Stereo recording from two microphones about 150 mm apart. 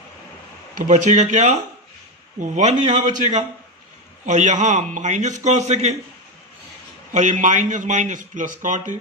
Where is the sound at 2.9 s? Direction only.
55° right (ahead or behind).